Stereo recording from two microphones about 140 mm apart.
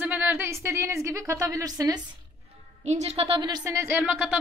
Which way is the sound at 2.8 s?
50° right (ahead or behind).